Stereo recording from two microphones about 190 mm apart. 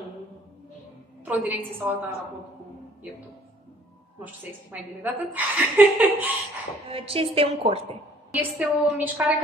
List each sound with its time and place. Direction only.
1.2 s a woman's voice: 10° right (ahead or behind)
4.2 s a woman's voice: 10° right (ahead or behind)
6.9 s a woman's voice: 30° right (ahead or behind)
8.3 s a woman's voice: 10° right (ahead or behind)